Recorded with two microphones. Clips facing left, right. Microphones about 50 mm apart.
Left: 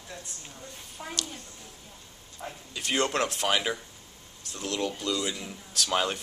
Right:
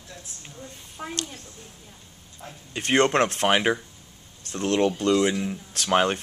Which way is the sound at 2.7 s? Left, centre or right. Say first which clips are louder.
Right 7 dB; right.